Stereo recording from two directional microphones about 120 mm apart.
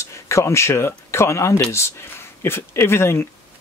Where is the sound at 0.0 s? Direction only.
25° left (ahead or behind).